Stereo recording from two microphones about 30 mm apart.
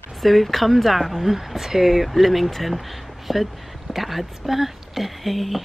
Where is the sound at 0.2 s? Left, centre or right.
Centre.